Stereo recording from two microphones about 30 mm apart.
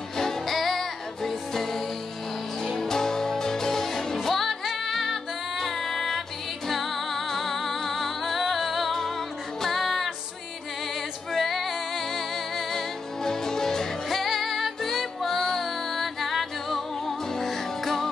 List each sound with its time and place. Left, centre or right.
0.2 s music: centre
4.5 s music: centre
11.3 s female singing: centre
13.2 s music: centre
14.0 s music: centre